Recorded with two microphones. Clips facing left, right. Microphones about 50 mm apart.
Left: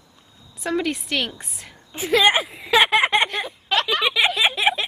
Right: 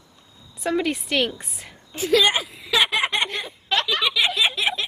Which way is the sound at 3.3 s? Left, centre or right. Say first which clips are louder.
Left 2 dB; centre.